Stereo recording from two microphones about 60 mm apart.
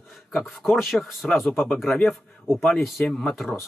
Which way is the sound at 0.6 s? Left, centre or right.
Centre.